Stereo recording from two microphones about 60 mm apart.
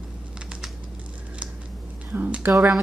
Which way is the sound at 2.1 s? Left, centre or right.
Right.